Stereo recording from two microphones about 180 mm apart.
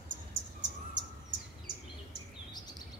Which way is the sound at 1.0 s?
75° right (ahead or behind).